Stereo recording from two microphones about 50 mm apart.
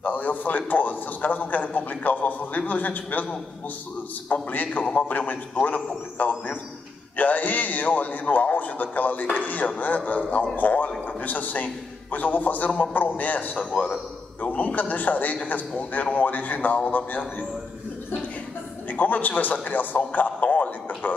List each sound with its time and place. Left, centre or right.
0.0 s a man's voice: left
4.3 s a man's voice: left
18.9 s a man's voice: left